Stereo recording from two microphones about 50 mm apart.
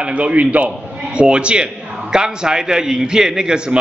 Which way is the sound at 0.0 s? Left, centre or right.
Right.